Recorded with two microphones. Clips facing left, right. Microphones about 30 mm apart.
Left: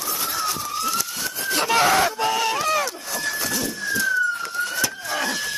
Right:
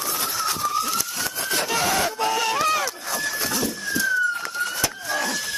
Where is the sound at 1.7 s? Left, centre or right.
Left.